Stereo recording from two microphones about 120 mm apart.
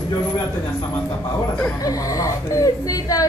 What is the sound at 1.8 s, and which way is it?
Speech, 30° left (ahead or behind).